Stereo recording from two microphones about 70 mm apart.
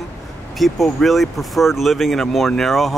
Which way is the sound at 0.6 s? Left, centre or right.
Centre.